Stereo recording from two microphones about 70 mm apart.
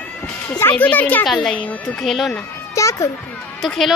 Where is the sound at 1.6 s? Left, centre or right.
Centre.